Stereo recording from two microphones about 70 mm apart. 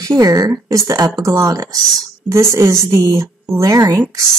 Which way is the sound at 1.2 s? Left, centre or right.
Right.